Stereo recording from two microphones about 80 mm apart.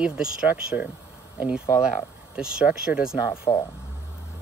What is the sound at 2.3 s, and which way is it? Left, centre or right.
Speech, centre.